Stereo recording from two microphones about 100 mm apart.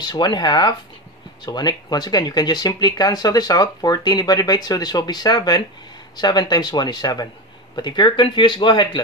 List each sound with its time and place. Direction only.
0.0 s speech: 45° left (ahead or behind)